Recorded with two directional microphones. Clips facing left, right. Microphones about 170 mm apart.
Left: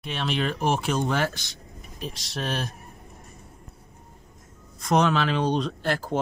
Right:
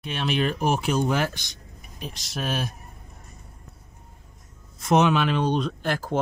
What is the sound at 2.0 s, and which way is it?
Speech, centre (ahead or behind).